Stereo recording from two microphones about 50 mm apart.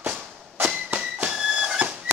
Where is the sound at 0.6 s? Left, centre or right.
Right.